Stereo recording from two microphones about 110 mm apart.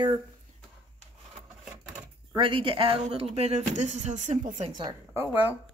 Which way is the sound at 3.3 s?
75° right (ahead or behind).